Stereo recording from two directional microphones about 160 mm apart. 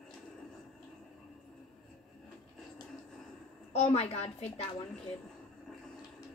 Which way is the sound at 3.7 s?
40° left (ahead or behind).